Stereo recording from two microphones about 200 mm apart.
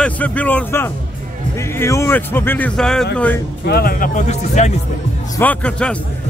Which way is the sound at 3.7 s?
50° left (ahead or behind).